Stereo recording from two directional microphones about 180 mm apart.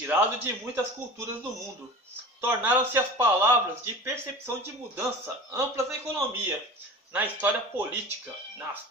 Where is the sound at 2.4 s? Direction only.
10° right (ahead or behind).